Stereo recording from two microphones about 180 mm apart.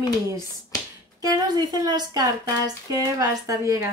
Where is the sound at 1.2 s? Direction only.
20° right (ahead or behind).